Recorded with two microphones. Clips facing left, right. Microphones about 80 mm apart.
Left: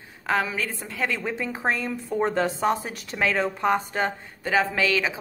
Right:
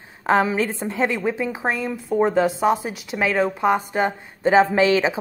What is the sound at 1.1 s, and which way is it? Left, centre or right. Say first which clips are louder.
A woman's voice: right 6 dB; centre.